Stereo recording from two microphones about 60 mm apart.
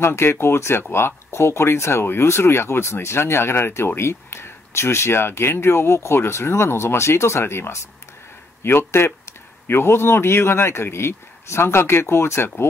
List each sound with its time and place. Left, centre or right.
0.0 s speech: left